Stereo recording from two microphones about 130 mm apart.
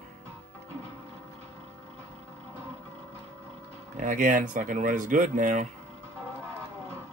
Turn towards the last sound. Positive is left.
turn(degrees=-85)